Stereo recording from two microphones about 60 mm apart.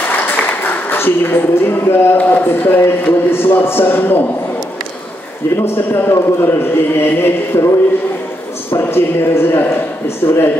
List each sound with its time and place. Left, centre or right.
0.2 s a sound: left
2.1 s a man's voice: left
5.6 s a man's voice: left